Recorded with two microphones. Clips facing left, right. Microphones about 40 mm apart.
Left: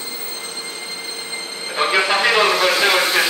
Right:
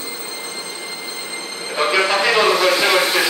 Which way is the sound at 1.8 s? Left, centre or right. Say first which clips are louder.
Right 1 dB; left.